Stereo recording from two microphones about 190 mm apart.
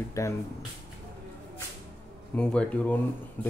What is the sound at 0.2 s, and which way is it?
Speech, 15° left (ahead or behind).